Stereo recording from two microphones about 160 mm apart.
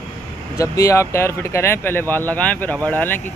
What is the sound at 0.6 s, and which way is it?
Speech, 20° left (ahead or behind).